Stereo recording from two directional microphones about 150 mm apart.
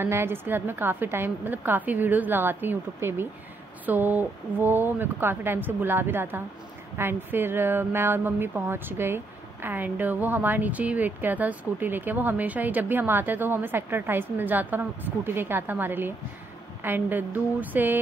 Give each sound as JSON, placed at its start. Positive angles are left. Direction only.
{"t": 0.0, "sound": "speech", "side_deg": -15}